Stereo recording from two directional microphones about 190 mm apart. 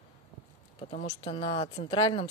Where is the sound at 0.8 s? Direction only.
35° left (ahead or behind).